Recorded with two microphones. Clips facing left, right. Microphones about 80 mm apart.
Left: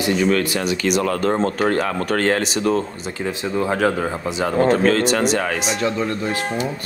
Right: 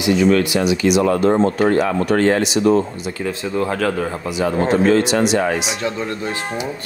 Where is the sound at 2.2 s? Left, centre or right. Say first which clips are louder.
Right 2 dB; left.